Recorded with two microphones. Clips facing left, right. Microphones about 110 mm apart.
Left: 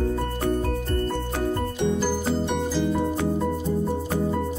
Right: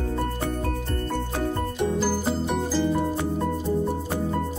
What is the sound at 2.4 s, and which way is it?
Music, centre (ahead or behind).